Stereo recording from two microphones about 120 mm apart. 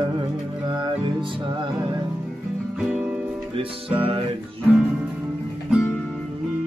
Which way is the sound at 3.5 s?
50° right (ahead or behind).